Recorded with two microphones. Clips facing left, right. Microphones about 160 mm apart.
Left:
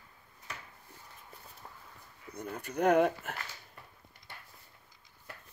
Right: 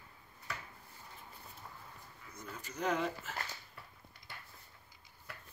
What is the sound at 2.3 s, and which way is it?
Speech, 60° left (ahead or behind).